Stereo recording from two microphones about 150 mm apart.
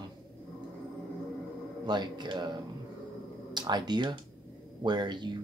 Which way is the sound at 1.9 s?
30° right (ahead or behind).